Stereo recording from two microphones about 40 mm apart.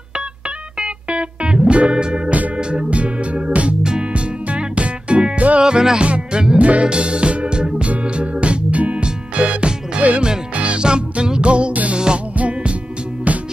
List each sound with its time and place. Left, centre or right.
0.7 s music: right
4.1 s music: right
5.6 s music: centre
6.6 s music: right
11.7 s music: right